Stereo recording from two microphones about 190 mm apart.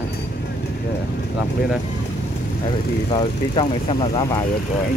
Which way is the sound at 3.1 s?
25° left (ahead or behind).